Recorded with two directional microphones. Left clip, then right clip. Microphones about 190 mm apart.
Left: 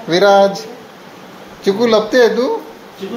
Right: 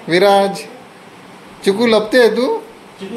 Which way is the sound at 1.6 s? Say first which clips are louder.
Left 1 dB; 30° right (ahead or behind).